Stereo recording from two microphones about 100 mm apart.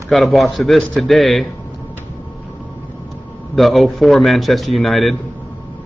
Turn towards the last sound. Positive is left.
turn(degrees=0)  # may be behind; listen again after turning